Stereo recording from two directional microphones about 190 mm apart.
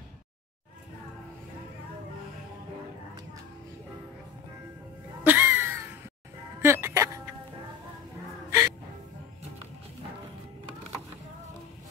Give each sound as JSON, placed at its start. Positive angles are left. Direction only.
{"t": 5.2, "sound": "a sound", "side_deg": -10}
{"t": 6.6, "sound": "music", "side_deg": -15}
{"t": 8.5, "sound": "music", "side_deg": -15}